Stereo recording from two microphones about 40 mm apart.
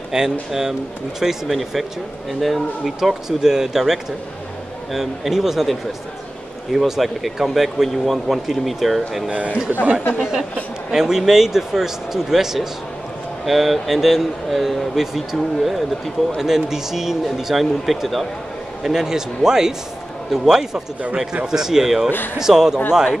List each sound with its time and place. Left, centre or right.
0.1 s a man's voice: centre
6.9 s speech: centre
9.3 s a man's voice: right
10.1 s a man's voice: centre